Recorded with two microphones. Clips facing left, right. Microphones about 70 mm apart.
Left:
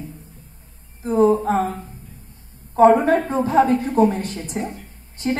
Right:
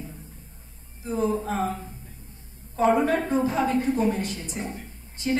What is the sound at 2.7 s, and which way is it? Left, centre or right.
A woman's voice, left.